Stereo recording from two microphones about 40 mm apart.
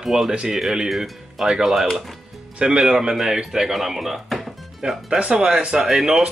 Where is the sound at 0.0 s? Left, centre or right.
Centre.